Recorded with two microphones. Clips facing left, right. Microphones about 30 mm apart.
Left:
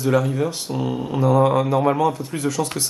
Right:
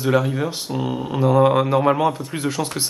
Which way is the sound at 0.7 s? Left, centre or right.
Centre.